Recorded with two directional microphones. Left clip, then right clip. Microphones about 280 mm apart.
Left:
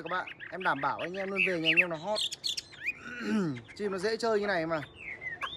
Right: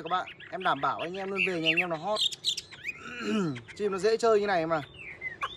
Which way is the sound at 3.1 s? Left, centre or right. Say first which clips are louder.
Right 2 dB; centre.